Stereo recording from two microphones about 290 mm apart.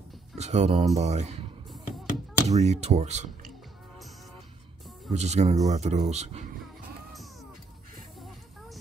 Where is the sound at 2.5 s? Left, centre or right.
Right.